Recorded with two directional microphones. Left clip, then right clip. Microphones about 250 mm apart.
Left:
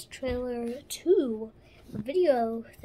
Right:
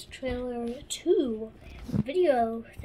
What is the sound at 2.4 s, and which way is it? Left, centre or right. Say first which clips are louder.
Speech: right 1 dB; centre.